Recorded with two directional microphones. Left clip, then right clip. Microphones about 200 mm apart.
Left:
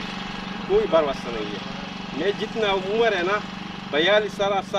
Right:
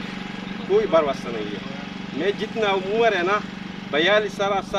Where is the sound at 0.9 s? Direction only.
10° right (ahead or behind).